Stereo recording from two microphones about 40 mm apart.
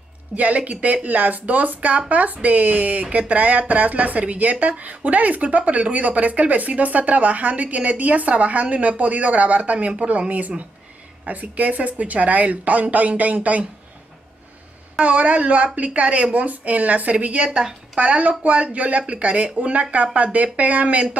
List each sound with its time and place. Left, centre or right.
0.4 s speech: right
15.0 s speech: right